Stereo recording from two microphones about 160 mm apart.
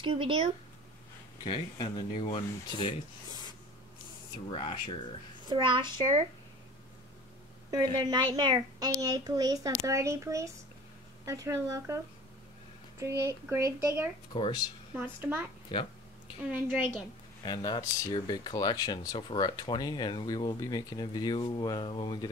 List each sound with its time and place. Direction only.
0.0 s speech: 35° right (ahead or behind)
1.4 s speech: 30° left (ahead or behind)
4.5 s speech: 30° left (ahead or behind)
5.5 s a child's voice: 30° right (ahead or behind)
7.7 s a child's voice: 25° right (ahead or behind)
13.0 s speech: 20° right (ahead or behind)
14.3 s speech: 30° left (ahead or behind)
15.0 s speech: 10° right (ahead or behind)
17.5 s speech: 25° left (ahead or behind)